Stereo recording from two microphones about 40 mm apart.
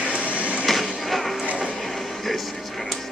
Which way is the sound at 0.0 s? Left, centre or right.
Right.